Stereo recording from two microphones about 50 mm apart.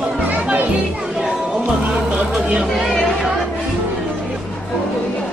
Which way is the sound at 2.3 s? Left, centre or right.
Right.